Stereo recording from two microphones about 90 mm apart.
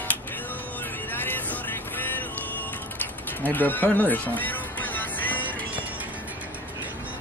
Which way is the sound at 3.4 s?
20° left (ahead or behind).